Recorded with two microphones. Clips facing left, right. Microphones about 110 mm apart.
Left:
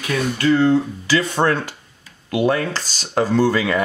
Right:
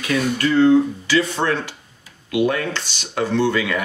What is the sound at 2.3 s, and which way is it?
Speech, 35° left (ahead or behind).